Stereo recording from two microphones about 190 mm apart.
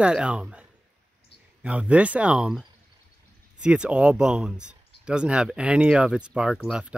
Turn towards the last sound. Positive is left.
turn(degrees=-5)  # may be behind; listen again after turning